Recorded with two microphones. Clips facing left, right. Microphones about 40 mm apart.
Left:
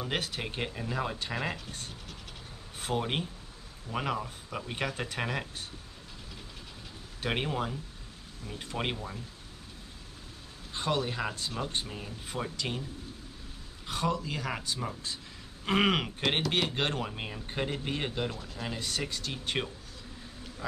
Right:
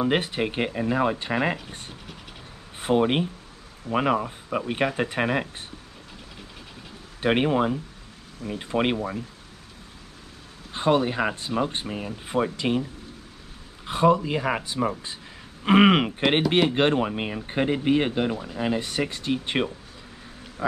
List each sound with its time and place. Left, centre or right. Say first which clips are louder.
0.0 s speech: right 10 dB; right
7.2 s speech: right 10 dB; right
10.7 s speech: right 9 dB; right
13.8 s speech: right 11 dB; right